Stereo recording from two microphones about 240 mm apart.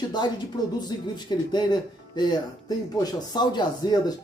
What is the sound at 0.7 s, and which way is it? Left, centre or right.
A man's voice, centre.